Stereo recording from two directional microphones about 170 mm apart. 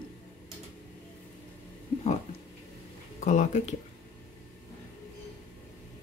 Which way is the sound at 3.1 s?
45° left (ahead or behind).